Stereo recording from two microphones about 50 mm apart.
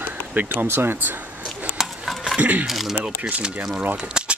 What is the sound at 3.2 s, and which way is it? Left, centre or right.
Speech, right.